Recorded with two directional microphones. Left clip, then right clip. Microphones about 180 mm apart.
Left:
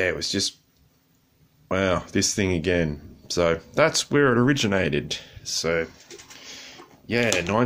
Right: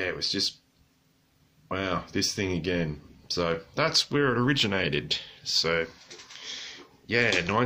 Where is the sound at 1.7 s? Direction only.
45° left (ahead or behind).